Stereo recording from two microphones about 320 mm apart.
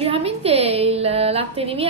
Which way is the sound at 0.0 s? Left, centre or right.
Centre.